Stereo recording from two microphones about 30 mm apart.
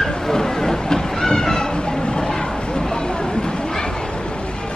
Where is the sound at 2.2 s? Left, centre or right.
Centre.